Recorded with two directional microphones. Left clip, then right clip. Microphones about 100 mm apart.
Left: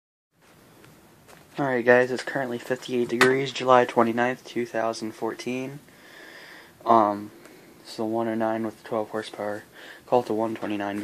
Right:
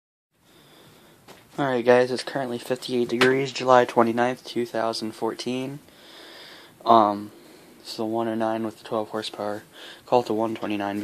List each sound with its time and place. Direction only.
1.6 s speech: 15° right (ahead or behind); by 5.7 s 35° right (ahead or behind)
6.3 s a sound: 25° right (ahead or behind)
7.8 s speech: 15° right (ahead or behind)